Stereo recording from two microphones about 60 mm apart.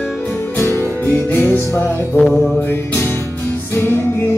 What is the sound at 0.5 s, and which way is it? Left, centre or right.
Music, left.